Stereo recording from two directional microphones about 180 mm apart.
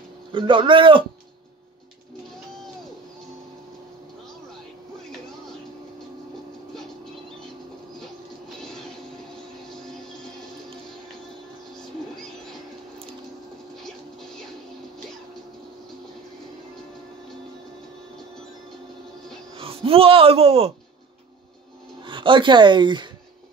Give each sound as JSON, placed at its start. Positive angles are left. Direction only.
{"t": 0.3, "sound": "speech", "side_deg": -30}
{"t": 8.0, "sound": "music", "side_deg": 0}
{"t": 13.8, "sound": "music", "side_deg": 0}
{"t": 19.5, "sound": "a sound", "side_deg": -30}
{"t": 22.0, "sound": "speech", "side_deg": -25}